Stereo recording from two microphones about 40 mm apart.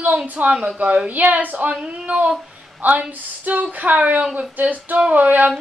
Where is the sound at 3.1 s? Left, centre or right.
Right.